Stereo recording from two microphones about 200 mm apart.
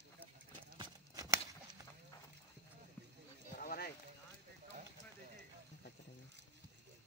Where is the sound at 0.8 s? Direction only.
15° right (ahead or behind).